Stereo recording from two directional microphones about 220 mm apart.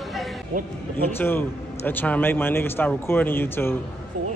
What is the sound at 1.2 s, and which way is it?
Speech, 10° left (ahead or behind).